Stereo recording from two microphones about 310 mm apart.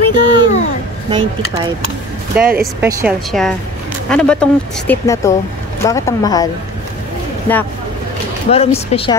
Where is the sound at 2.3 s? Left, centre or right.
Centre.